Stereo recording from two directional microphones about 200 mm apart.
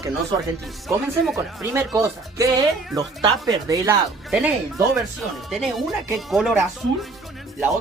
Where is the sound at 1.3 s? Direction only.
10° right (ahead or behind).